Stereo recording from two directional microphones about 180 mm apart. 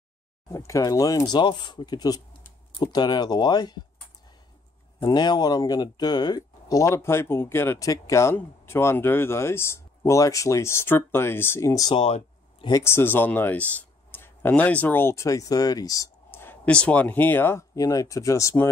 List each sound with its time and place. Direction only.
0.5 s speech: 15° left (ahead or behind)
5.0 s speech: 20° left (ahead or behind)